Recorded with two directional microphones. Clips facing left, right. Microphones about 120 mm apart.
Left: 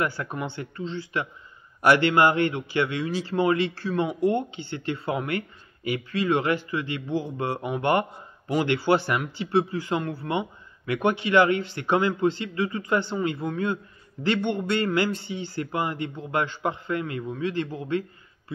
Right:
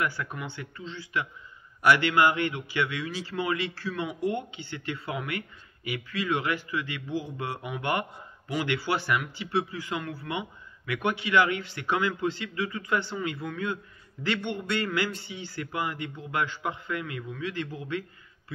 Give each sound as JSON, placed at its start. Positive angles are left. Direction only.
{"t": 0.0, "sound": "a man's voice", "side_deg": 35}